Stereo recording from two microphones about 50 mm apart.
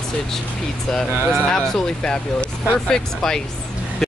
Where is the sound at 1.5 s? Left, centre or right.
Centre.